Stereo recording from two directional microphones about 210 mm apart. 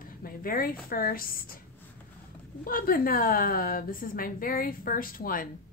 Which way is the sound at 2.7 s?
45° left (ahead or behind).